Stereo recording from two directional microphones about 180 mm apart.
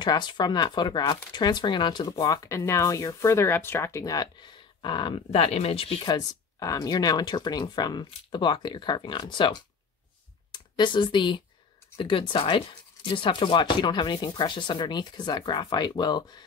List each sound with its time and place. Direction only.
0.0 s speech: 25° left (ahead or behind)